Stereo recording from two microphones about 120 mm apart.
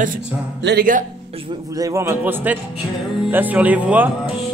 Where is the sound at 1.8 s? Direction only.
25° right (ahead or behind).